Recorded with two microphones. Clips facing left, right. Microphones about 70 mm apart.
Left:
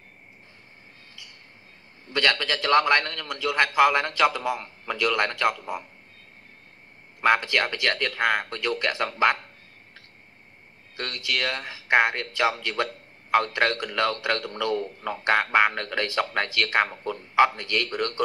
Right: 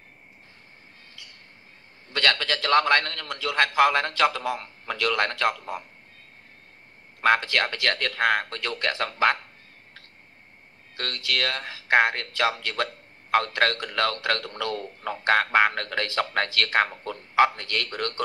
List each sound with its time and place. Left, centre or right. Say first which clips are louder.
2.0 s a man's voice: even; left
7.2 s a man's voice: even; left
11.0 s a man's voice: even; left